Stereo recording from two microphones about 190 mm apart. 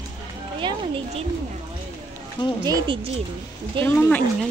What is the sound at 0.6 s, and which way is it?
Speech, 25° right (ahead or behind).